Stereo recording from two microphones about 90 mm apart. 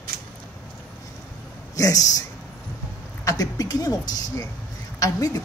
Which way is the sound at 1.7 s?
40° left (ahead or behind).